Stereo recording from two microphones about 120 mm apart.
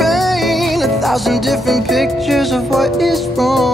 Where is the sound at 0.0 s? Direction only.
Centre (ahead or behind).